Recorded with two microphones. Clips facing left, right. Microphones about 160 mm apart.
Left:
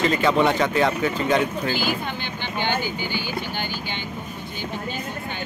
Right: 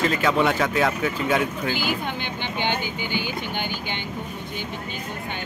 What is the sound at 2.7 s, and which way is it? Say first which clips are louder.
Speech: left 1 dB; 20° right (ahead or behind).